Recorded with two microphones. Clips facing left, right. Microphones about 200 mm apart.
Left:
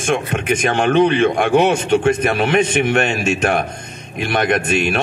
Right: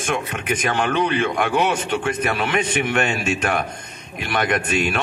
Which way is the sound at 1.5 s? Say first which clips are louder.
Left 9 dB; 25° left (ahead or behind).